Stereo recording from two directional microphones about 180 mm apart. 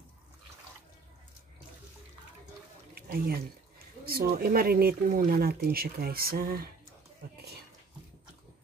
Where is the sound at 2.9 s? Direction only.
55° right (ahead or behind).